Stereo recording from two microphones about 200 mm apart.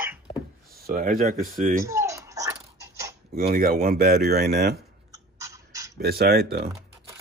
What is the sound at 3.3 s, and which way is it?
Speech, 45° right (ahead or behind).